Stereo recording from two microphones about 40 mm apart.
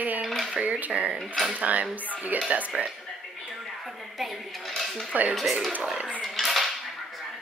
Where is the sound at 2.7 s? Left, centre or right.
Centre.